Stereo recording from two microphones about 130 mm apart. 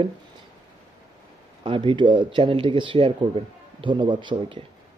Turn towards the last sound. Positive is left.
turn(degrees=-35)  # may be behind; listen again after turning